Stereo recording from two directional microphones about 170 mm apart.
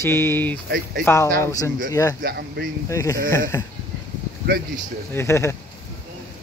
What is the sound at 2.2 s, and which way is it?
Speech, 75° right (ahead or behind).